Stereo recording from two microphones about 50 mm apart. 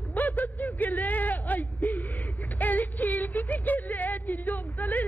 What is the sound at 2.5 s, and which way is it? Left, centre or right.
Speech, left.